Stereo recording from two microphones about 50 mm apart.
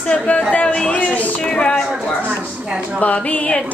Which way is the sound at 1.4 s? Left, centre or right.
Centre.